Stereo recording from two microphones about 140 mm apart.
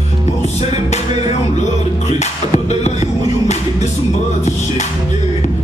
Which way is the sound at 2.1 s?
55° left (ahead or behind).